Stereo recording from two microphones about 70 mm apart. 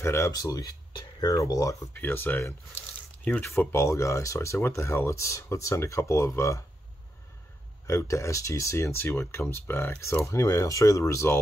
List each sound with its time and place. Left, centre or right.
0.0 s speech: left
0.3 s speech: left
1.4 s speech: left
2.0 s speech: left
3.4 s speech: left
7.8 s speech: left
10.2 s speech: left